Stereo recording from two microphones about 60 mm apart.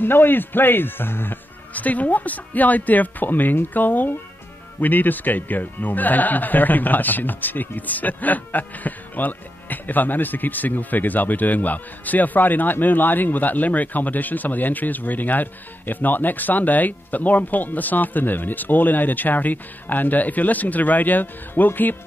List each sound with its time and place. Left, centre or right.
0.0 s speech: left
1.7 s speech: left